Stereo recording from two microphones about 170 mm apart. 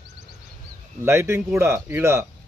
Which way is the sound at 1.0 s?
15° right (ahead or behind).